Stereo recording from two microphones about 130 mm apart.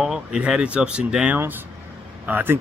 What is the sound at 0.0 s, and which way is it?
Speech, 5° right (ahead or behind).